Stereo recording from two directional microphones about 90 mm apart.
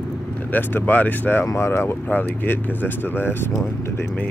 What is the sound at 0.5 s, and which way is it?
Speech, 20° left (ahead or behind).